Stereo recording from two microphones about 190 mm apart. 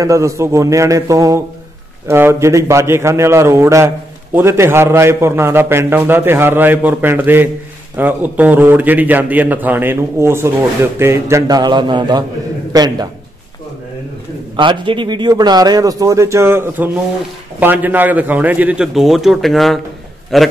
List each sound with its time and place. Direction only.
0.0 s a man's voice: 15° right (ahead or behind)
14.6 s a man's voice: 25° right (ahead or behind); by 20.5 s centre (ahead or behind)